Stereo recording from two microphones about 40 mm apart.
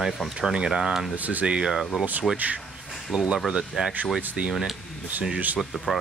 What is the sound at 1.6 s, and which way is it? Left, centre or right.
Speech, centre.